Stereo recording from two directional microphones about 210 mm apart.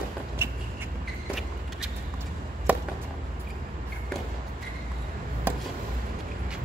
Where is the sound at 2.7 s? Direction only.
5° right (ahead or behind).